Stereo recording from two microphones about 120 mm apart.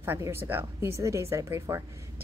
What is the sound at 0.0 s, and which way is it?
A woman's voice, 20° right (ahead or behind).